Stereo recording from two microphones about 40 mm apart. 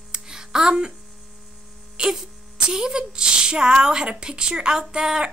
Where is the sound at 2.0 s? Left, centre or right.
Right.